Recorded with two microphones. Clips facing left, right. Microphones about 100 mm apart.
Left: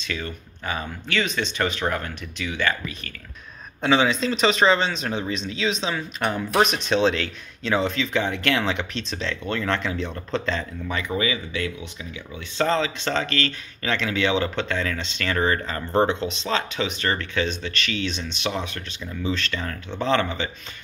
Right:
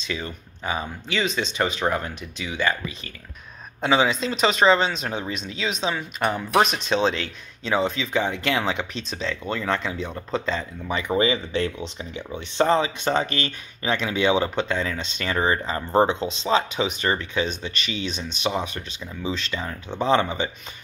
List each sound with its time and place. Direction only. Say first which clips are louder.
0.1 s speech: even; 15° right (ahead or behind)
3.8 s speech: left 1 dB; 5° right (ahead or behind)
11.1 s speech: right 6 dB; 30° right (ahead or behind)
12.5 s speech: right 2 dB; 20° right (ahead or behind)